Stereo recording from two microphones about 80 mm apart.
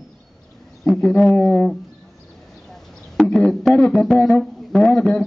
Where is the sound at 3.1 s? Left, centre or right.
Centre.